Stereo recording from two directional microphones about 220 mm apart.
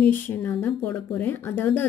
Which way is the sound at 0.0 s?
10° left (ahead or behind).